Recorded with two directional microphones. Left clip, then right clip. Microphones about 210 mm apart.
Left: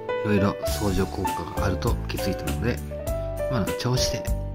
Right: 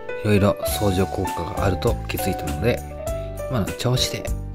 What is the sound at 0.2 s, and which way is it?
Speech, 20° right (ahead or behind).